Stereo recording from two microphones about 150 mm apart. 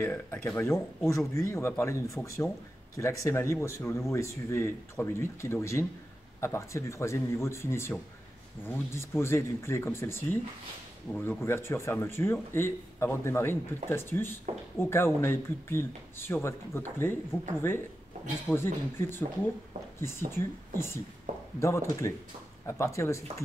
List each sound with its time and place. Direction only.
0.0 s a man's voice: 15° left (ahead or behind)